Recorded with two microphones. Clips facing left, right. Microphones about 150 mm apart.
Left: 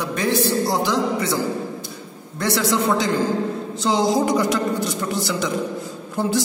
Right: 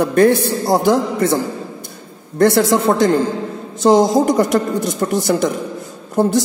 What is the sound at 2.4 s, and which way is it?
A man's voice, 55° right (ahead or behind).